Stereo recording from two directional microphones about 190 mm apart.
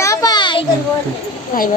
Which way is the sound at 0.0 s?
20° left (ahead or behind).